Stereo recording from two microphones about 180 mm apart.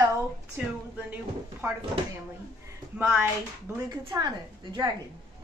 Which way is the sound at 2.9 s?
10° right (ahead or behind).